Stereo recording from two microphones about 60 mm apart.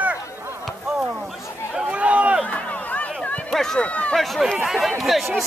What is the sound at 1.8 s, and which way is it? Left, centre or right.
Run, right.